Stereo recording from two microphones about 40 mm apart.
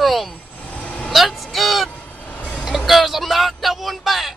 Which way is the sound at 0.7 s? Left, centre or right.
Left.